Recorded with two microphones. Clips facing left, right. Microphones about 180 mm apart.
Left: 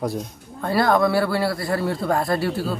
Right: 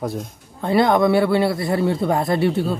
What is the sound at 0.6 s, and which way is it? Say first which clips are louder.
Speech: right 3 dB; 20° right (ahead or behind).